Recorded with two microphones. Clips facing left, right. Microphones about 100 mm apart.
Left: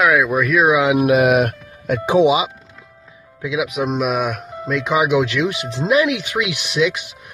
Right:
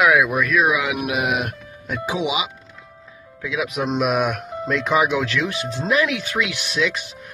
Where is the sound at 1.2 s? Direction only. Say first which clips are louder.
Left 8 dB; 60° left (ahead or behind).